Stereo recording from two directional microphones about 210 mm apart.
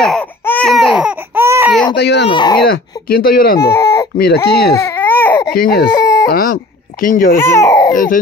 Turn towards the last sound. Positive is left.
turn(degrees=15)  # may be behind; listen again after turning